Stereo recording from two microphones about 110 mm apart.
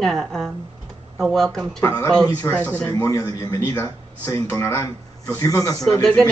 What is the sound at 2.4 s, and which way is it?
A man's voice, 25° left (ahead or behind).